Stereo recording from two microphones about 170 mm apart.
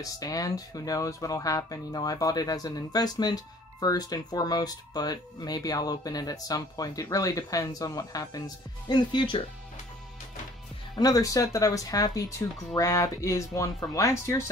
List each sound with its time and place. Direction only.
0.0 s speech: 20° left (ahead or behind)
11.0 s speech: 20° left (ahead or behind)